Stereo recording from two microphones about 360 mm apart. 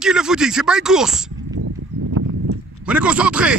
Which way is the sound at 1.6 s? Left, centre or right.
Right.